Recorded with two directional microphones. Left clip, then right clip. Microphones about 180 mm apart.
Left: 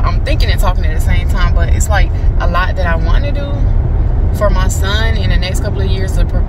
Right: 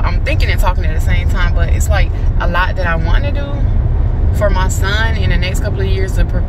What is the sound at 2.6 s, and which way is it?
Speech, 15° left (ahead or behind).